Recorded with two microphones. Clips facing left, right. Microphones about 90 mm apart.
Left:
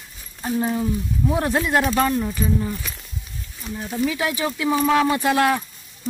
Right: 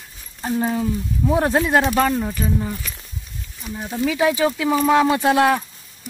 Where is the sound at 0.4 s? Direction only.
25° right (ahead or behind).